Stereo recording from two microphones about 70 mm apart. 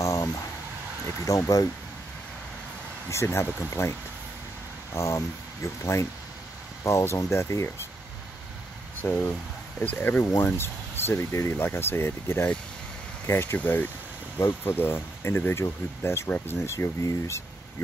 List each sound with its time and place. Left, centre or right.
0.0 s a sound: left
1.3 s speech: left
3.1 s speech: left
4.9 s speech: left
9.0 s speech: left
13.6 s speech: left
17.0 s speech: left